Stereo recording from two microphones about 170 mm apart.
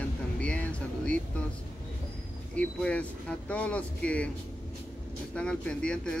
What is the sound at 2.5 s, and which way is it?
Speech, 5° left (ahead or behind).